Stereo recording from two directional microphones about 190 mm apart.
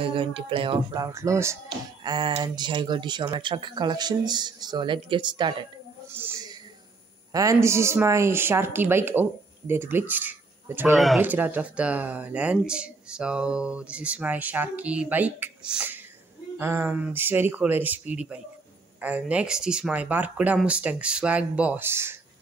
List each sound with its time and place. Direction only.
0.0 s speech: 25° right (ahead or behind)
6.2 s speech: 10° right (ahead or behind)
7.3 s speech: 15° right (ahead or behind)